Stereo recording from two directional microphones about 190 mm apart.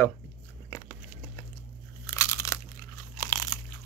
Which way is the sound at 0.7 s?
15° left (ahead or behind).